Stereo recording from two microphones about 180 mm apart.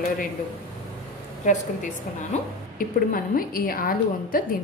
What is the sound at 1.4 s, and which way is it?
Speech, 40° left (ahead or behind).